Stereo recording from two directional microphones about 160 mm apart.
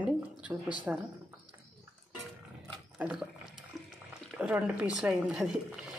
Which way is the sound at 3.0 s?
10° right (ahead or behind).